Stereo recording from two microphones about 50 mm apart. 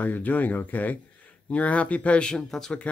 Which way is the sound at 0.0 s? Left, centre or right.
Left.